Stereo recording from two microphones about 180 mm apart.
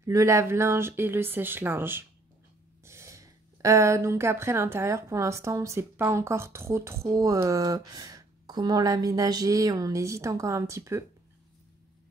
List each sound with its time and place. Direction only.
0.0 s speech: 15° right (ahead or behind)